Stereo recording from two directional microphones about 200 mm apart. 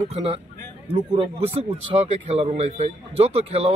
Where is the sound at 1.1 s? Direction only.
30° right (ahead or behind).